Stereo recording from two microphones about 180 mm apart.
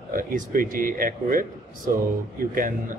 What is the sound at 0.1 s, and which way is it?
Speech, 50° right (ahead or behind).